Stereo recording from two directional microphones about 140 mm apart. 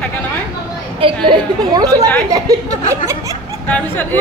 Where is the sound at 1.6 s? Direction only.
30° right (ahead or behind).